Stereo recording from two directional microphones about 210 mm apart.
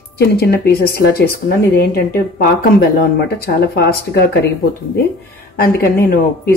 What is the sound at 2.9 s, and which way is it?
Speech, 50° left (ahead or behind).